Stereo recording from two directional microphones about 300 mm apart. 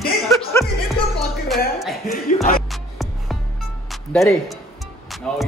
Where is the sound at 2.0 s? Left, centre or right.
Left.